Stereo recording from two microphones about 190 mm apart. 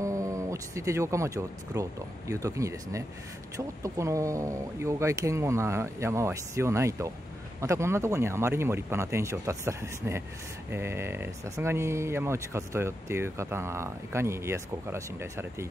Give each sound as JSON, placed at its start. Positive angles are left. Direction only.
{"t": 0.0, "sound": "speech", "side_deg": -15}